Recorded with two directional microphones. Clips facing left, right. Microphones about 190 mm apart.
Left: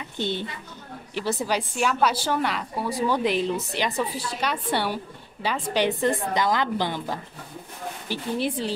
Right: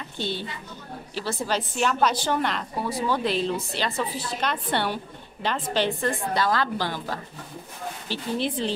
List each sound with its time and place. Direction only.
0.2 s a woman's voice: 20° left (ahead or behind)